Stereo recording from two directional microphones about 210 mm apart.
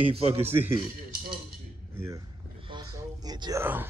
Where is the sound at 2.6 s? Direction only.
20° right (ahead or behind).